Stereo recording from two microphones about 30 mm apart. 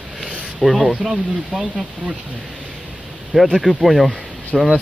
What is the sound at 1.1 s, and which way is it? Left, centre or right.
Speech, right.